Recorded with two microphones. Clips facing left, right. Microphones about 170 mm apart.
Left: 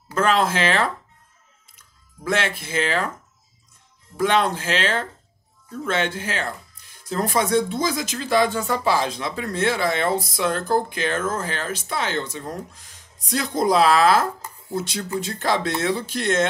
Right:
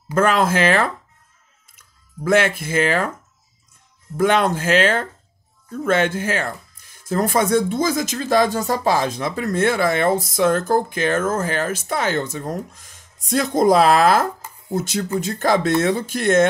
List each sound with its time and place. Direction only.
0.1 s speech: 50° right (ahead or behind)
4.2 s speech: 50° right (ahead or behind)